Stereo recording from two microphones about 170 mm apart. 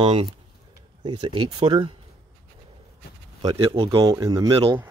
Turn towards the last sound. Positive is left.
turn(degrees=-30)  # may be behind; listen again after turning